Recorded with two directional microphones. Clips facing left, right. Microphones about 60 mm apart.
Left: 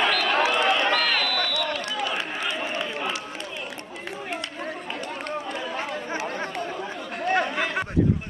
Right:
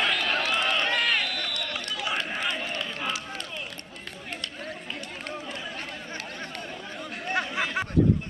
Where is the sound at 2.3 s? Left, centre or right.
Centre.